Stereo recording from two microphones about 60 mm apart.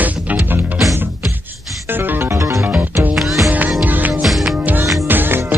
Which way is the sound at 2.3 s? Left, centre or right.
Right.